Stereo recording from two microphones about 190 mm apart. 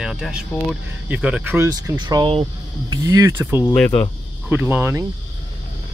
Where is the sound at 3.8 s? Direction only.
5° left (ahead or behind).